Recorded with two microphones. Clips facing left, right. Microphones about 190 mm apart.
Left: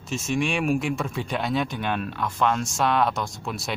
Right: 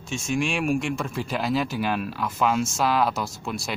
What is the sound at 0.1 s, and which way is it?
A man's voice, centre (ahead or behind).